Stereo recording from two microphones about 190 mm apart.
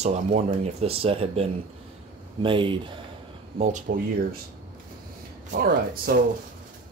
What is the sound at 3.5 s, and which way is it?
Speech, 40° right (ahead or behind).